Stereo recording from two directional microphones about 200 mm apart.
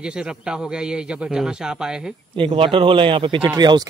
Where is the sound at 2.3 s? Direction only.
25° right (ahead or behind).